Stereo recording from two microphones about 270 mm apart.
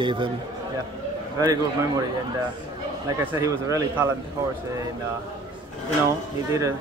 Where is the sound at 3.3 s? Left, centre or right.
Centre.